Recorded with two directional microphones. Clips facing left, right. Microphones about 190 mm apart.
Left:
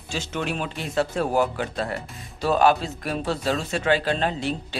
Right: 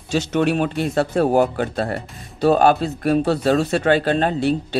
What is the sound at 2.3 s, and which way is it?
Speech, 55° right (ahead or behind).